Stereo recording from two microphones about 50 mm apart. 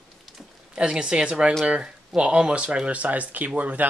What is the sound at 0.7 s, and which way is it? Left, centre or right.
A woman's voice, centre.